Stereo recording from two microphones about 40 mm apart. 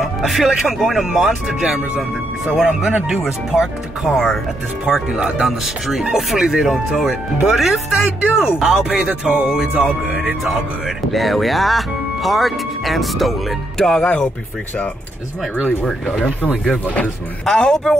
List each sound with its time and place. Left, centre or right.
0.0 s speech: centre
0.7 s speech: centre
1.1 s speech: centre
4.1 s speech: centre
4.8 s speech: centre
8.9 s music: right
11.1 s speech: centre
16.8 s speech: left
17.6 s speech: centre